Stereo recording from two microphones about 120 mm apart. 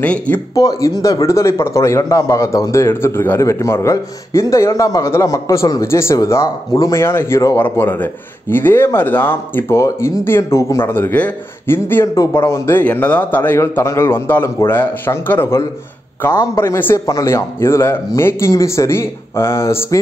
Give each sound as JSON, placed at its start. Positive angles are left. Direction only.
{"t": 0.0, "sound": "speech", "side_deg": 10}
{"t": 0.6, "sound": "a man's voice", "side_deg": 30}